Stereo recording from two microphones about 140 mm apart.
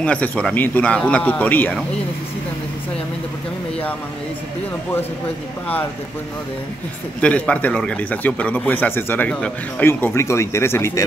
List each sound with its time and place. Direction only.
0.0 s a man's voice: 10° left (ahead or behind)
7.2 s a man's voice: 10° left (ahead or behind)